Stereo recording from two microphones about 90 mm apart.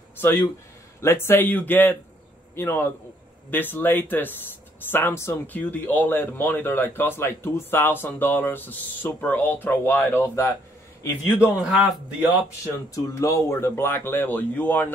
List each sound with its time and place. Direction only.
0.2 s speech: 25° left (ahead or behind)
11.6 s a man's voice: 15° right (ahead or behind)
12.9 s speech: 35° left (ahead or behind); by 14.9 s 20° left (ahead or behind)